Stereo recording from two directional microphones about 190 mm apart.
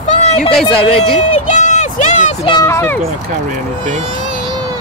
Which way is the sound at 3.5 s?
40° right (ahead or behind).